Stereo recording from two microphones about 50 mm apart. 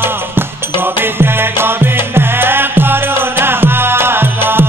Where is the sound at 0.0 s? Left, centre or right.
Right.